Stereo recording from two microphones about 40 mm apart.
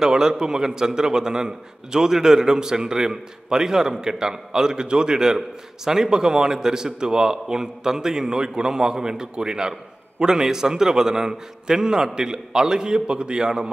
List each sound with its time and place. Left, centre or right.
0.0 s a man's voice: centre